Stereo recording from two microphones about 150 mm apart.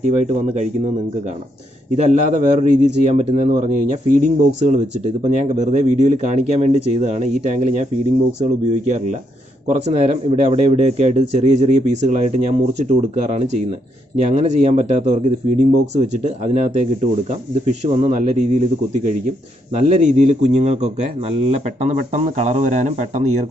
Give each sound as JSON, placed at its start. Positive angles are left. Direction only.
{"t": 0.2, "sound": "a man's voice", "side_deg": -50}
{"t": 2.0, "sound": "a man's voice", "side_deg": -50}
{"t": 19.9, "sound": "a man's voice", "side_deg": -50}